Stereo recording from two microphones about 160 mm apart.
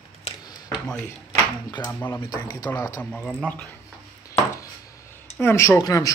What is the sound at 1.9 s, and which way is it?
A man's voice, 15° left (ahead or behind).